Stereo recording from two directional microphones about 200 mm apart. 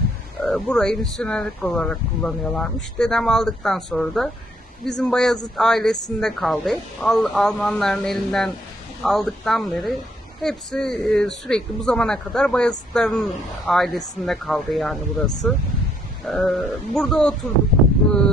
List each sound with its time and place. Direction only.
0.5 s speech: centre (ahead or behind)